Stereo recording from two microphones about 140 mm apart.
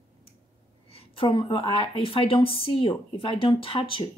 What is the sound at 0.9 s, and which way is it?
A woman's voice, 40° left (ahead or behind).